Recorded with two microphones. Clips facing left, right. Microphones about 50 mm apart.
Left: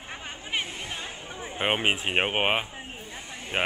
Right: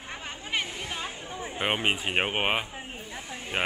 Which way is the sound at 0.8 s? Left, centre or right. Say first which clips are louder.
Right 1 dB; centre.